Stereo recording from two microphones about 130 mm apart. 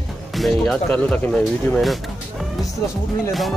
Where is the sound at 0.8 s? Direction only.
10° left (ahead or behind).